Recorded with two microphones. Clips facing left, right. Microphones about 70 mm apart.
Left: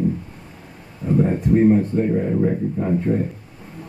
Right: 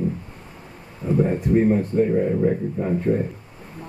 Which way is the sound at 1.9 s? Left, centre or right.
Right.